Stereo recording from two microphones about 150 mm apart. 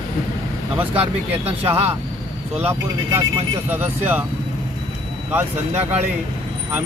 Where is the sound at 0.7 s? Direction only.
10° right (ahead or behind).